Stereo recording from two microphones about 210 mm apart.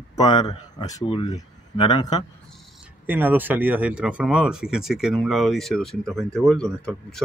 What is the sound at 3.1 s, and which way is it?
Speech, 10° right (ahead or behind).